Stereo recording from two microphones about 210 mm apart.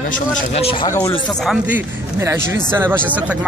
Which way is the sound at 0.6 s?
25° left (ahead or behind).